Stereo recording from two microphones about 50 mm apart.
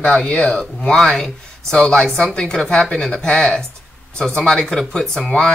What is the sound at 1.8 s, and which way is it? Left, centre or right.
Speech, centre.